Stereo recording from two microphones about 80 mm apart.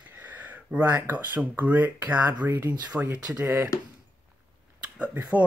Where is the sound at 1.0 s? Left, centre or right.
Right.